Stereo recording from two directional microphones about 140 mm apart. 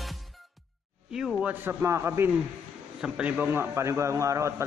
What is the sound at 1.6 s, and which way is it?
Speech, 20° right (ahead or behind).